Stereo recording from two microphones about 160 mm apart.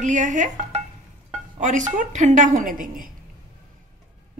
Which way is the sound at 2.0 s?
50° right (ahead or behind).